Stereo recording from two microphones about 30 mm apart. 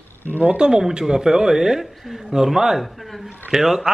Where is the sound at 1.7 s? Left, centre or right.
Centre.